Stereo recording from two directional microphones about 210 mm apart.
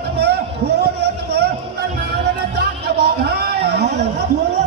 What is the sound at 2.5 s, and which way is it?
Music, 50° right (ahead or behind).